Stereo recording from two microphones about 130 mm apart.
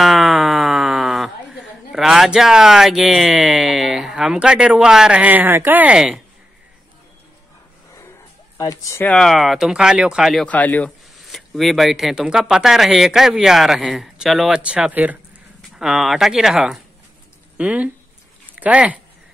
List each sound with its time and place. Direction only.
0.0 s speech: centre (ahead or behind)
8.5 s speech: 25° left (ahead or behind)
9.0 s speech: 5° left (ahead or behind)
10.4 s speech: 10° left (ahead or behind)
11.1 s speech: centre (ahead or behind)